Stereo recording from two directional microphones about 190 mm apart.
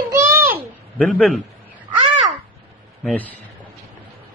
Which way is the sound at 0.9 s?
5° left (ahead or behind).